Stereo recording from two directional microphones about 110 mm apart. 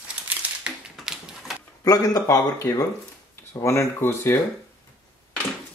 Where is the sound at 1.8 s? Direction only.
35° left (ahead or behind).